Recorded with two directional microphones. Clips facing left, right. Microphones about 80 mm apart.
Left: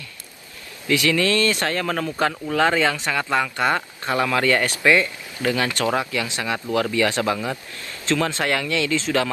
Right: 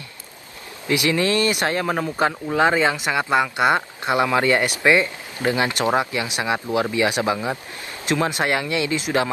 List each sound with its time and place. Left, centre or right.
0.8 s speech: right